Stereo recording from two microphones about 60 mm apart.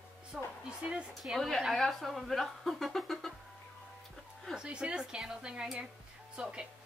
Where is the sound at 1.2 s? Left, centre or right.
Centre.